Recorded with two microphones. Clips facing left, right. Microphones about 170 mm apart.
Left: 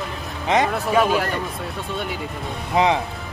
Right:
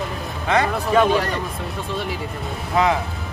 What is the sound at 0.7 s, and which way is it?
Speech, 5° left (ahead or behind).